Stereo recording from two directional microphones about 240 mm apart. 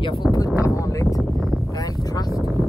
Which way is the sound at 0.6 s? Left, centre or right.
Centre.